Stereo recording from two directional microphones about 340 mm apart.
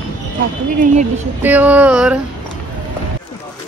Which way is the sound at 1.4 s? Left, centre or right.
Centre.